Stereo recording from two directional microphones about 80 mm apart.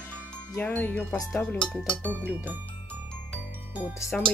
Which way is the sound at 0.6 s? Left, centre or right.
Left.